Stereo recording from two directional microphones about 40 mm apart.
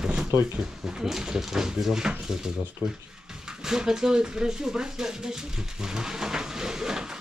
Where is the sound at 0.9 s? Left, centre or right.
Centre.